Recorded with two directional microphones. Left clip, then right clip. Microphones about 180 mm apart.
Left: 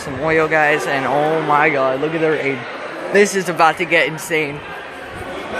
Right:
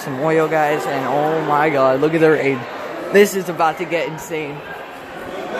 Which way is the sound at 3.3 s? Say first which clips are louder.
Left 4 dB; 10° left (ahead or behind).